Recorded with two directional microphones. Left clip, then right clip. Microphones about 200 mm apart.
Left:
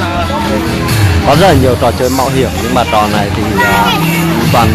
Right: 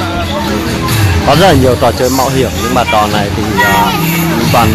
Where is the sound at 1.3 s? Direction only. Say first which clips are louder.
Right 1 dB; 5° right (ahead or behind).